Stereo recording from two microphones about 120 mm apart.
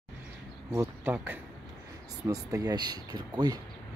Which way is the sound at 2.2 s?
30° right (ahead or behind).